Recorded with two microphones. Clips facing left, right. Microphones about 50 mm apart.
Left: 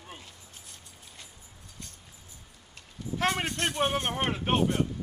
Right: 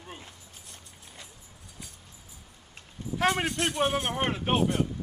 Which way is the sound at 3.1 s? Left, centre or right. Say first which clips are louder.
Right 2 dB; centre.